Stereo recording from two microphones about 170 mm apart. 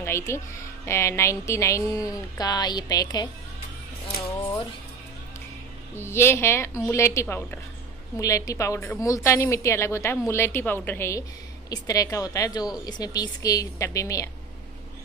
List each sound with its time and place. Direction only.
0.0 s a woman's voice: 15° left (ahead or behind)
5.9 s a woman's voice: 15° left (ahead or behind)